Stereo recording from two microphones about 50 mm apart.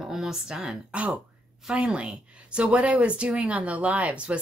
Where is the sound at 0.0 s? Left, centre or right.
Centre.